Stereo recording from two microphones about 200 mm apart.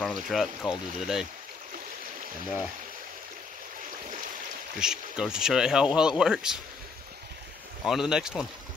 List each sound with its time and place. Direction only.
0.0 s speech: centre (ahead or behind)
4.7 s speech: 5° right (ahead or behind)
7.8 s speech: centre (ahead or behind)